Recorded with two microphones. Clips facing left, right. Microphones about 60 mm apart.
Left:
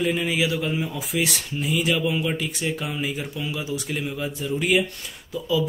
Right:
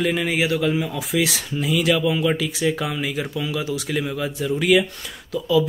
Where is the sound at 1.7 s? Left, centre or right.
Right.